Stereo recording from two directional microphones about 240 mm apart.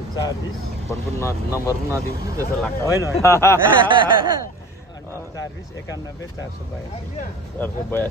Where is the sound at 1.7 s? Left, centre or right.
Centre.